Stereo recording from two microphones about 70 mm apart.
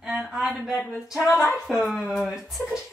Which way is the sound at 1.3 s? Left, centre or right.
Centre.